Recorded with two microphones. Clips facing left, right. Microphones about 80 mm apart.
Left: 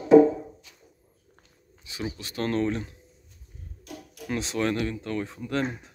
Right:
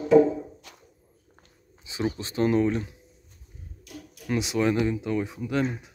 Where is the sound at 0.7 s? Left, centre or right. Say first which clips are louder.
Right 7 dB; right.